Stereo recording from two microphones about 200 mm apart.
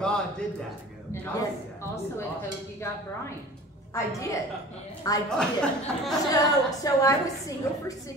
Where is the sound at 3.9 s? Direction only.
15° left (ahead or behind).